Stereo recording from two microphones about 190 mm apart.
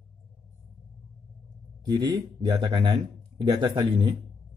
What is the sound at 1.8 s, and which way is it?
Speech, 20° right (ahead or behind).